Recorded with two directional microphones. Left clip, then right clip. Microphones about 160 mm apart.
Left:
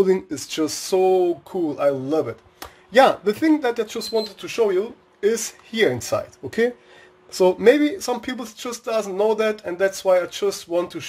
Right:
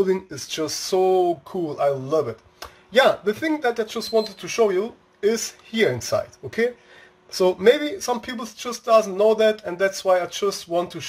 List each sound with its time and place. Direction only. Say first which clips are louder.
0.0 s speech: left 3 dB; 30° left (ahead or behind)